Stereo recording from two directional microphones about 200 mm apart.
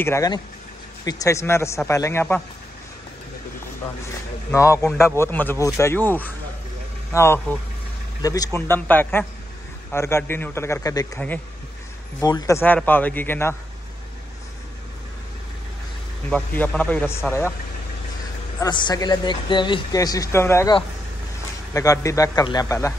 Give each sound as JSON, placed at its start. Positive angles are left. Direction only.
{"t": 0.0, "sound": "a man's voice", "side_deg": 15}
{"t": 4.5, "sound": "a man's voice", "side_deg": 15}
{"t": 16.5, "sound": "a man's voice", "side_deg": 5}
{"t": 18.6, "sound": "speech", "side_deg": 20}
{"t": 21.7, "sound": "a man's voice", "side_deg": 15}